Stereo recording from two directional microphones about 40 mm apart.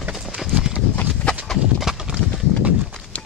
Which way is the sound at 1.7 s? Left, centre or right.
Centre.